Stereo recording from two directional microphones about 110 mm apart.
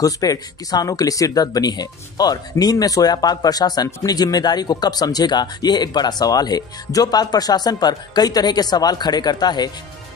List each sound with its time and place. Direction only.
0.0 s speech: 35° left (ahead or behind)